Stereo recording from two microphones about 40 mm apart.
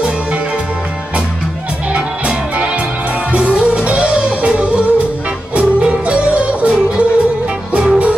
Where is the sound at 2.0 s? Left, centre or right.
Right.